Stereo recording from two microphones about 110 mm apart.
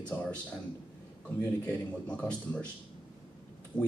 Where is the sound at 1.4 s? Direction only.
15° left (ahead or behind).